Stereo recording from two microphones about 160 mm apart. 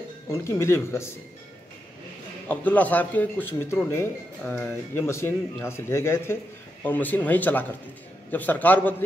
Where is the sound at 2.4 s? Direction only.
10° left (ahead or behind).